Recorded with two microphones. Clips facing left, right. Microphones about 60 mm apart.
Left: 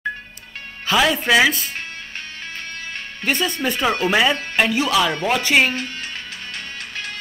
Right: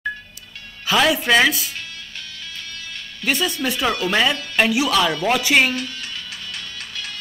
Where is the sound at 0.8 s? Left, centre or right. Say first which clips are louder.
Even; centre.